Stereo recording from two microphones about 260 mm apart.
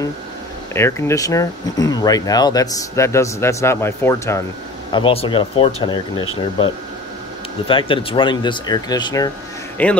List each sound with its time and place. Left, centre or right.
0.7 s speech: centre
4.9 s speech: left
7.6 s speech: centre